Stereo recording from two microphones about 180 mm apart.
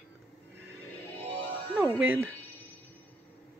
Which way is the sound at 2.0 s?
10° right (ahead or behind).